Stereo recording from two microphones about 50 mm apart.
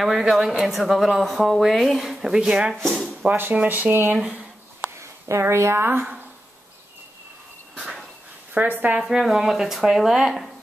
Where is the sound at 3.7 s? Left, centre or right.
Right.